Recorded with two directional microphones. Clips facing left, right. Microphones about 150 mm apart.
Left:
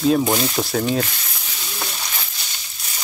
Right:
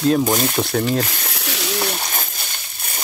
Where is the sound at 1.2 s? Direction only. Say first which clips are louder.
Right 9 dB; 80° right; by 2.5 s 50° right (ahead or behind).